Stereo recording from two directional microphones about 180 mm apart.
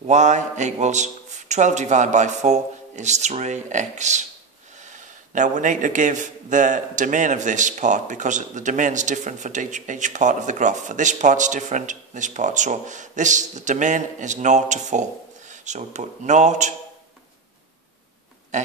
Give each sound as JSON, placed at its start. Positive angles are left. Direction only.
{"t": 0.0, "sound": "a man's voice", "side_deg": -40}
{"t": 18.5, "sound": "a man's voice", "side_deg": -45}